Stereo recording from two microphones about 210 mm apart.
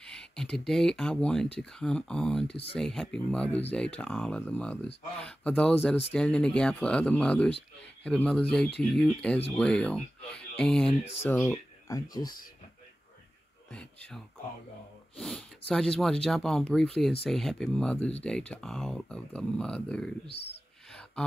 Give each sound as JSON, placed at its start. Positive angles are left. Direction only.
{"t": 0.0, "sound": "speech", "side_deg": 5}
{"t": 10.9, "sound": "speech", "side_deg": 30}
{"t": 11.2, "sound": "speech", "side_deg": 10}
{"t": 13.7, "sound": "speech", "side_deg": 5}